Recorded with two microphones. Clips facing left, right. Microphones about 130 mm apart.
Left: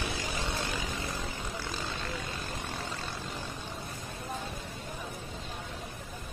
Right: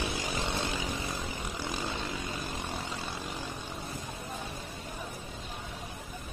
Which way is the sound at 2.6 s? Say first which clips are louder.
Right 1 dB; 15° right (ahead or behind).